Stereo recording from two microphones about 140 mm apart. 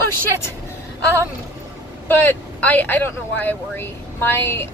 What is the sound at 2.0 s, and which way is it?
Speech, 15° left (ahead or behind).